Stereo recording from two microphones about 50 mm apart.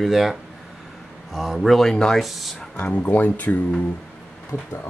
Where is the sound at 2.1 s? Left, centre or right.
Centre.